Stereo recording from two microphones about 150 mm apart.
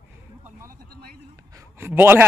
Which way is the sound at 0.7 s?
85° right.